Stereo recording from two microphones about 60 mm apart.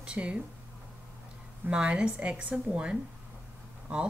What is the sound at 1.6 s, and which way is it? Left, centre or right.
A woman's voice, centre.